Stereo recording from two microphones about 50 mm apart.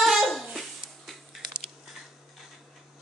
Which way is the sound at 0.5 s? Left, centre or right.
Centre.